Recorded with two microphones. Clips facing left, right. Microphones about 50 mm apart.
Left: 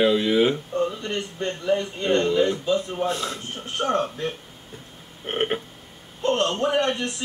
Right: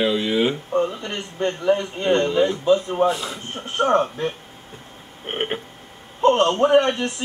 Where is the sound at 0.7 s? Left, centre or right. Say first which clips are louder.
Right 3 dB; right.